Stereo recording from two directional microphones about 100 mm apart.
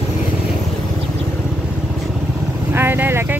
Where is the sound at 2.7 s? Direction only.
20° right (ahead or behind).